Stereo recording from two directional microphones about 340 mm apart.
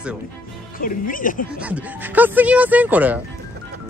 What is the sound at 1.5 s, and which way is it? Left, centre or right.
Speech, centre.